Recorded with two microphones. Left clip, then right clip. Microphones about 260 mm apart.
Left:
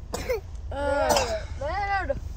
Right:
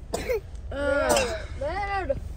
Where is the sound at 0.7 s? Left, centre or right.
Centre.